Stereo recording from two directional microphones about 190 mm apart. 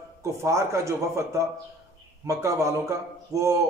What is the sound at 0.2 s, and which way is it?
A man's voice, 15° right (ahead or behind).